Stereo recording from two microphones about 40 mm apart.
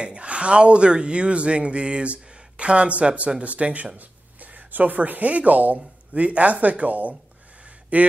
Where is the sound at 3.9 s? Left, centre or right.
Right.